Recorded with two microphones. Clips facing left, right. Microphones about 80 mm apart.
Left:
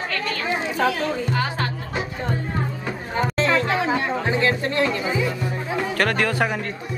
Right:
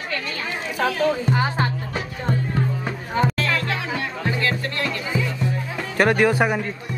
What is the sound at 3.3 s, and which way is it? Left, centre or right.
Music, left.